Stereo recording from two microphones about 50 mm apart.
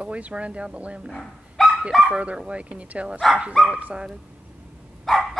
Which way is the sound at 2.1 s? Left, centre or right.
Right.